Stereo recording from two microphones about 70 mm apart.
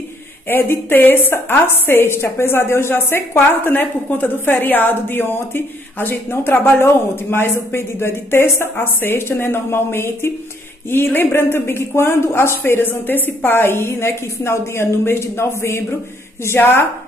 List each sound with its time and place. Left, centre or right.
0.5 s a woman's voice: left